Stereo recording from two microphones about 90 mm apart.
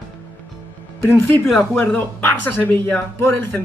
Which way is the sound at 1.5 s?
20° left (ahead or behind).